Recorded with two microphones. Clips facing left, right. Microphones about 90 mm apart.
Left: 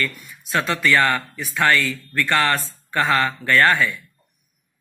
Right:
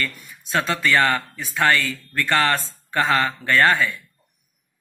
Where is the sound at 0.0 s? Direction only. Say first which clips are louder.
Left 2 dB; 30° right (ahead or behind).